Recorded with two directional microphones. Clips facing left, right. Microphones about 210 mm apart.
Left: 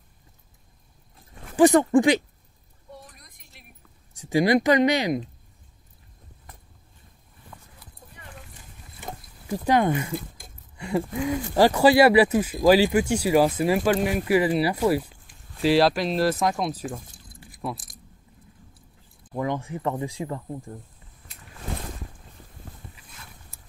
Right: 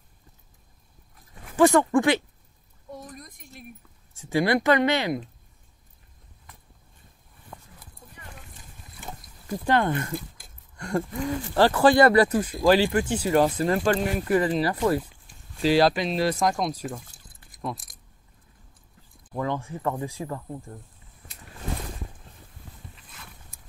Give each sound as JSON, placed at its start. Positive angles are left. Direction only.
{"t": 1.1, "sound": "dog", "side_deg": 20}
{"t": 3.1, "sound": "a sound", "side_deg": -45}
{"t": 4.1, "sound": "speech", "side_deg": 15}
{"t": 9.5, "sound": "speech", "side_deg": 10}
{"t": 19.3, "sound": "speech", "side_deg": 15}